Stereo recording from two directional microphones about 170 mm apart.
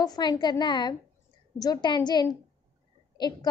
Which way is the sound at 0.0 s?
25° left (ahead or behind).